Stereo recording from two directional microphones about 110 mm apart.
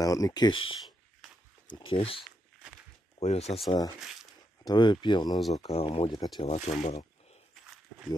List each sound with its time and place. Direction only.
0.0 s speech: 35° left (ahead or behind)
1.8 s speech: 55° left (ahead or behind)
3.2 s speech: 75° left (ahead or behind)
4.6 s speech: 45° left (ahead or behind)
5.3 s speech: centre (ahead or behind)
5.6 s speech: 60° left (ahead or behind)
6.4 s speech: 70° left (ahead or behind)